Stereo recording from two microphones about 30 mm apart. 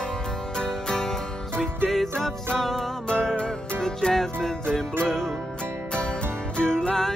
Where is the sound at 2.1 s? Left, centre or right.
Centre.